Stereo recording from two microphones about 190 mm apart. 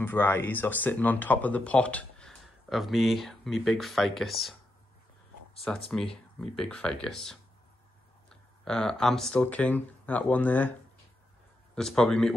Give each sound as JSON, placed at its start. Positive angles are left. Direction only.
{"t": 0.0, "sound": "speech", "side_deg": 10}
{"t": 6.0, "sound": "speech", "side_deg": 5}
{"t": 11.7, "sound": "speech", "side_deg": 5}